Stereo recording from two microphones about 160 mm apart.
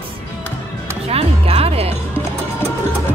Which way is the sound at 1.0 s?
40° right (ahead or behind).